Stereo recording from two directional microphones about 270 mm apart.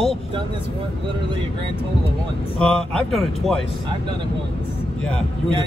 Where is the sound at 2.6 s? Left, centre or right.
Centre.